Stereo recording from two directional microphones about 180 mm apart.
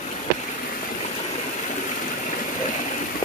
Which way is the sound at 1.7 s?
45° left (ahead or behind).